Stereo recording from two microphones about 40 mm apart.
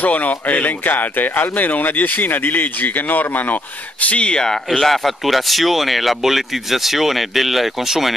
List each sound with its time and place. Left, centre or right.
0.0 s speech: left
4.7 s speech: centre